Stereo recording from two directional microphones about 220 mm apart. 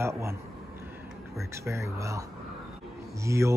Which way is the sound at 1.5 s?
10° right (ahead or behind).